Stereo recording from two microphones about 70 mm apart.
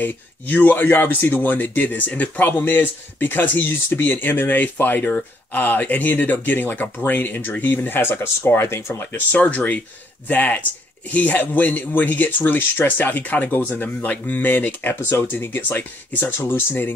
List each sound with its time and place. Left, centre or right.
0.0 s speech: left